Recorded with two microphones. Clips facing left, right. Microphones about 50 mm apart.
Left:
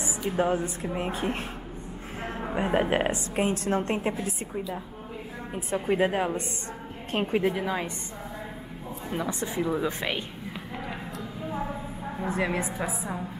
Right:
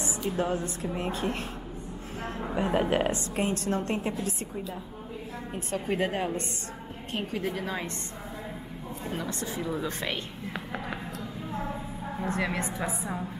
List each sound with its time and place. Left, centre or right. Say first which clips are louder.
0.4 s a woman's voice: left 5 dB; left
5.7 s speech: left 4 dB; centre
7.1 s a woman's voice: left 6 dB; left
7.5 s speech: left 4 dB; centre
9.1 s speech: left 5 dB; centre
11.5 s a sound: left 1 dB; centre